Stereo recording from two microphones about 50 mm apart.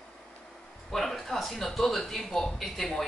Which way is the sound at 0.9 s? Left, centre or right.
Centre.